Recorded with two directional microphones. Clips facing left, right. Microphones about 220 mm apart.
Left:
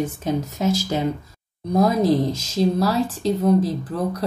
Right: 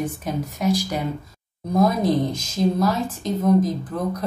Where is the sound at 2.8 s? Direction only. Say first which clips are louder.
Left 2 dB; 30° left (ahead or behind).